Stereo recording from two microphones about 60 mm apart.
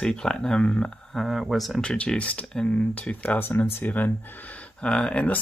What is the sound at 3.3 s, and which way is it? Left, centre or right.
Speech, left.